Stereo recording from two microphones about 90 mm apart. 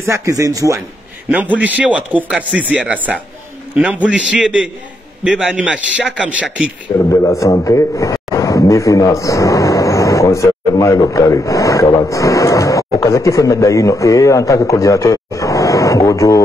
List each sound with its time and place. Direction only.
0.0 s speech: 35° right (ahead or behind)
1.3 s speech: 15° right (ahead or behind)
7.0 s a man's voice: 35° left (ahead or behind)